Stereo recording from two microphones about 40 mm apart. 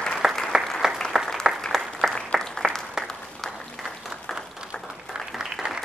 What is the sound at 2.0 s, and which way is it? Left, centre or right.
Applause, right.